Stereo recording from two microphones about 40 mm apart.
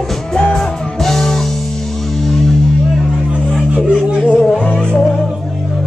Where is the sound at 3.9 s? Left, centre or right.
Right.